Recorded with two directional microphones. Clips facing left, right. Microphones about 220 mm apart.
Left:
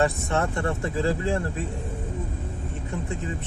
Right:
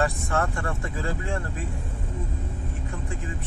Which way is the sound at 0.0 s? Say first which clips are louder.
Left 2 dB; 25° left (ahead or behind).